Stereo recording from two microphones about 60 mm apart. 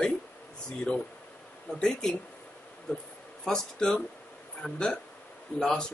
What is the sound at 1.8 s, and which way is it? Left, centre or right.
Speech, centre.